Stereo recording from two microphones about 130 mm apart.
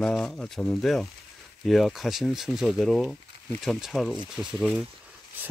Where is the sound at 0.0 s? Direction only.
5° left (ahead or behind).